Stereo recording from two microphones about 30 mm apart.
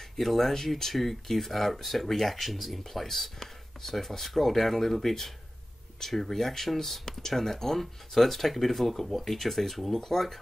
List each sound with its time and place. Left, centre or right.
0.2 s speech: centre